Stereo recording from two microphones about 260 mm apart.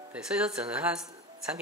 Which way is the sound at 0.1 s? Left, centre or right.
Centre.